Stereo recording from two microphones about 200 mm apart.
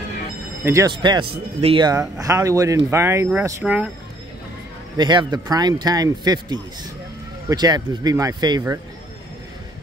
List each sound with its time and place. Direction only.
0.7 s a man's voice: 15° right (ahead or behind)
4.9 s a man's voice: 20° right (ahead or behind)